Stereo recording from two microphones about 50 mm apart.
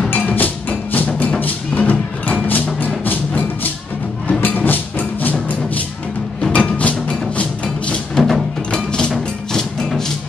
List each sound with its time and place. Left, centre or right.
0.1 s music: left
6.5 s music: left
8.1 s music: centre
8.7 s music: centre